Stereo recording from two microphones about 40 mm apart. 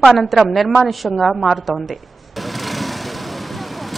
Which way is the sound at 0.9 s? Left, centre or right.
Centre.